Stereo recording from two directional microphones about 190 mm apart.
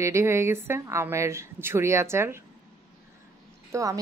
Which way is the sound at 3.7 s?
15° right (ahead or behind).